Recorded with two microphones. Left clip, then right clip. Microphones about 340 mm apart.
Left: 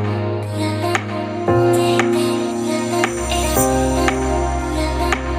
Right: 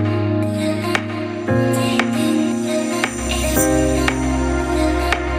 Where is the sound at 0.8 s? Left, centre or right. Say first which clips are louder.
Left 1 dB; centre.